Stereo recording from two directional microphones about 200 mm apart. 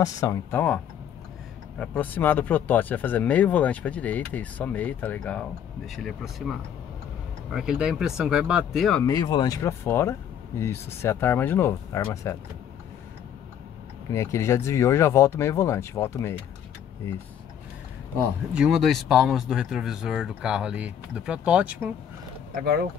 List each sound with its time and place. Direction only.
0.0 s speech: 15° left (ahead or behind)
1.8 s speech: 10° left (ahead or behind)
9.0 s speech: 20° left (ahead or behind)
14.1 s speech: 15° left (ahead or behind)
18.5 s speech: 5° right (ahead or behind)
22.5 s speech: 50° right (ahead or behind)